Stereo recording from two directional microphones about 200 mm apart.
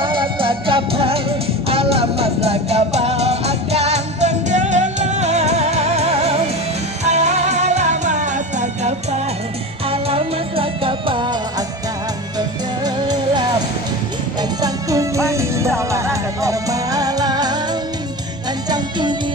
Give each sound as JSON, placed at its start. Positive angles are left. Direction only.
{"t": 0.0, "sound": "music", "side_deg": -25}
{"t": 12.4, "sound": "music", "side_deg": -20}
{"t": 14.6, "sound": "music", "side_deg": -15}
{"t": 18.7, "sound": "music", "side_deg": -20}